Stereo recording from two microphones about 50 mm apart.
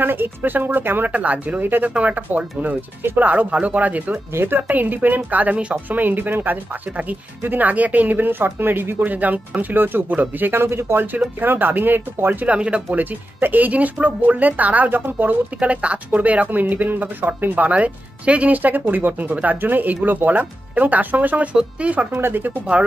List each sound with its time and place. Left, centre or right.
0.0 s a woman's voice: right
1.0 s a woman's voice: right
10.4 s speech: right
11.4 s a woman's voice: right
12.4 s speech: right
13.4 s a woman's voice: right
15.6 s a woman's voice: right
17.6 s a woman's voice: right
22.1 s speech: right
22.7 s speech: right